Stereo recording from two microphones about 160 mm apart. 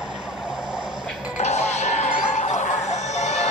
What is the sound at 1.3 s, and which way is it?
Music, 45° left (ahead or behind).